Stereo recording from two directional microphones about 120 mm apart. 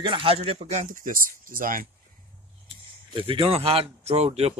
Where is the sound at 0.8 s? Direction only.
90° right.